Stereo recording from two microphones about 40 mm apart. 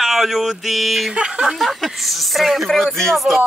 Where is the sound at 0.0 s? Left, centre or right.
Centre.